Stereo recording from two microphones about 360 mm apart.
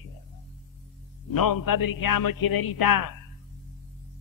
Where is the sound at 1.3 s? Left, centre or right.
Left.